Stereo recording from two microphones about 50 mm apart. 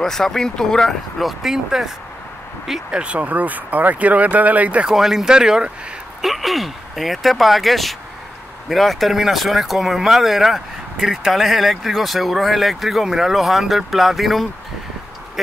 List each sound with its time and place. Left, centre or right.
0.0 s speech: centre
0.8 s speech: centre
3.0 s speech: right
4.8 s speech: centre
6.2 s speech: centre